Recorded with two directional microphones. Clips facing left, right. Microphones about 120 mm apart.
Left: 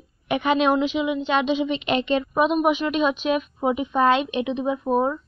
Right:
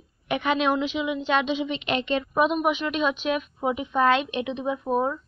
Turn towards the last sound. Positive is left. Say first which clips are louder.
# left 3 dB
turn(degrees=10)  # may be behind; listen again after turning